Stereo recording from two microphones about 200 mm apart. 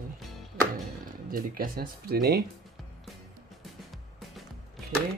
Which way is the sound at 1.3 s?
45° right (ahead or behind).